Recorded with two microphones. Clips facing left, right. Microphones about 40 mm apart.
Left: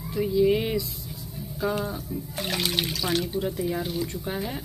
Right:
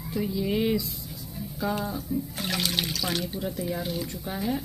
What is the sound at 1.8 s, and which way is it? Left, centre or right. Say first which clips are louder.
Speech: right 1 dB; centre.